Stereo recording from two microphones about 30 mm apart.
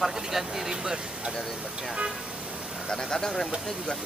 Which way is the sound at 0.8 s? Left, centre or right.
Right.